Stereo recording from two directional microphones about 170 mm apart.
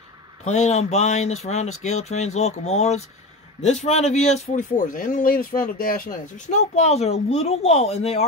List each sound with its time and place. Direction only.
0.5 s speech: 45° left (ahead or behind)